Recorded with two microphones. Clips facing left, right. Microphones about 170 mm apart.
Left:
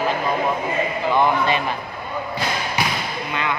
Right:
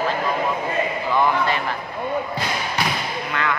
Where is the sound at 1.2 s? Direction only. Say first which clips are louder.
Left 1 dB; 20° left (ahead or behind).